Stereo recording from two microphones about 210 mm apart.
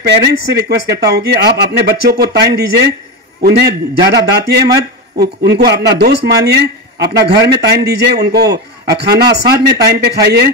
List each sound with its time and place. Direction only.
0.0 s a man's voice: 50° right (ahead or behind)